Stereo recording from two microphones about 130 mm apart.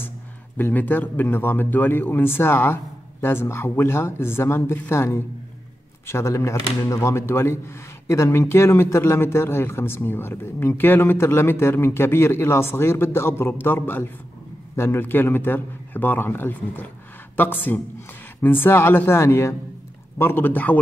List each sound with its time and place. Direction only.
0.6 s speech: 15° left (ahead or behind)